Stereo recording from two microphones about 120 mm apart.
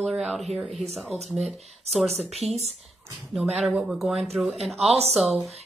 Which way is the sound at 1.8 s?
65° right (ahead or behind).